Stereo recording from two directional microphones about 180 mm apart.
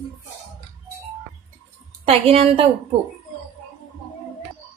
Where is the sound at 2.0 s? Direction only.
35° right (ahead or behind).